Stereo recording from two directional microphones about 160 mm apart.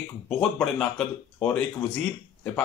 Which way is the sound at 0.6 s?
10° left (ahead or behind).